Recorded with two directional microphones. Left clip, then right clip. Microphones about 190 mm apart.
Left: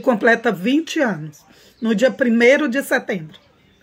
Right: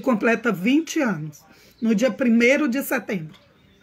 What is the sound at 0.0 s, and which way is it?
Speech, 15° right (ahead or behind).